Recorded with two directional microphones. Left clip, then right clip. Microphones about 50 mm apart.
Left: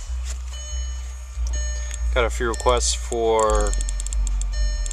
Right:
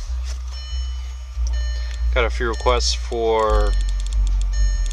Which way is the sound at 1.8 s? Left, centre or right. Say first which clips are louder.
Right 1 dB; centre.